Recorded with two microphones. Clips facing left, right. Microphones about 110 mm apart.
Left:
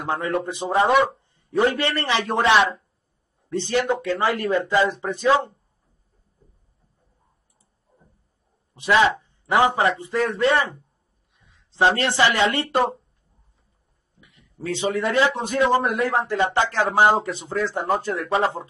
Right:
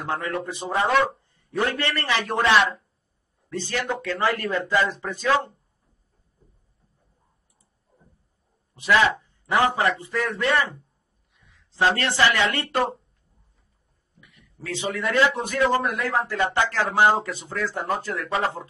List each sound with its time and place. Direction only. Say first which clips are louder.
0.0 s speech: left 3 dB; 25° left (ahead or behind)
8.7 s speech: left 2 dB; 20° left (ahead or behind)
14.2 s speech: left 7 dB; 25° left (ahead or behind)